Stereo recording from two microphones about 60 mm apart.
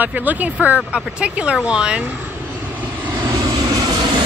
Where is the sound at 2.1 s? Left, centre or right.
Right.